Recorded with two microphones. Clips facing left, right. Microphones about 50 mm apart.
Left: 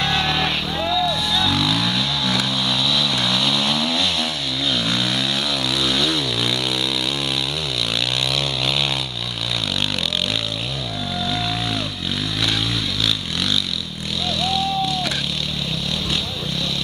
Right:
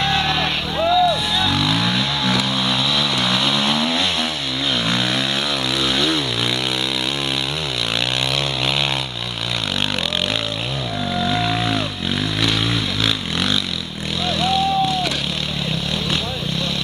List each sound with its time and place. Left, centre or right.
0.0 s vehicle: centre
11.1 s vehicle: right
13.0 s vehicle: centre